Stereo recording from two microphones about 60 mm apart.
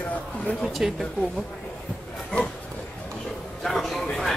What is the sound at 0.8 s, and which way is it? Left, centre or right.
Speech, centre.